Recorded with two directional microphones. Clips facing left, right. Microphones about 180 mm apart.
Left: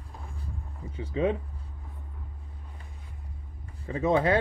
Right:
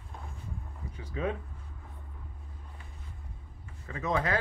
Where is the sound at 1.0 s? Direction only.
25° left (ahead or behind).